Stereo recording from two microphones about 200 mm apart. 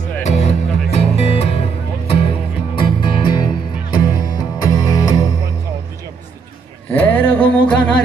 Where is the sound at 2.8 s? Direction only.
25° left (ahead or behind).